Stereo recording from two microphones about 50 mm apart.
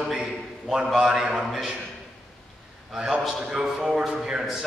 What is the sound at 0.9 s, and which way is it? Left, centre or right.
Speech, centre.